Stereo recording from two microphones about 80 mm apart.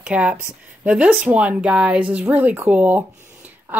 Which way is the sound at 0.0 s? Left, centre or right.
Centre.